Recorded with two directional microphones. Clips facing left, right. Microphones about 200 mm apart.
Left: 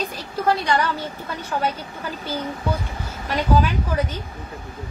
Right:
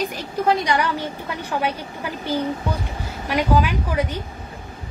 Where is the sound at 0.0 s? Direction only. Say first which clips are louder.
Right 2 dB; 15° right (ahead or behind).